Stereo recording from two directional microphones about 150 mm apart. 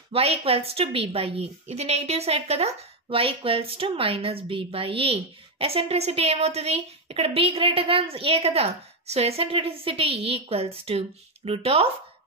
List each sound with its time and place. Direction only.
0.1 s a woman's voice: 40° right (ahead or behind)